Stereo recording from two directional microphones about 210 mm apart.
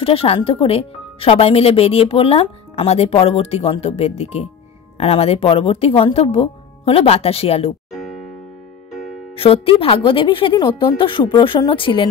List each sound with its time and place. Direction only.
0.0 s speech: 25° left (ahead or behind)
9.3 s speech: 25° left (ahead or behind)